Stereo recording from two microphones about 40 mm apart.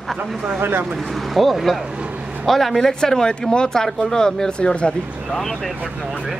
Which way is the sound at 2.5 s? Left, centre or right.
Centre.